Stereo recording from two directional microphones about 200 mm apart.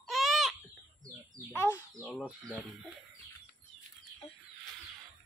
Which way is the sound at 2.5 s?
5° right (ahead or behind).